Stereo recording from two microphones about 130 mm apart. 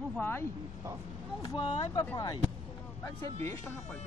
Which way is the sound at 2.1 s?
30° left (ahead or behind).